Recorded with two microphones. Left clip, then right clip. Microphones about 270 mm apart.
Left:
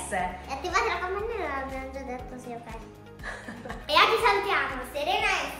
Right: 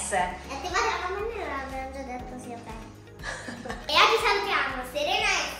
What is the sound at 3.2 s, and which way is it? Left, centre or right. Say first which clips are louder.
A child's voice: right 3 dB; centre.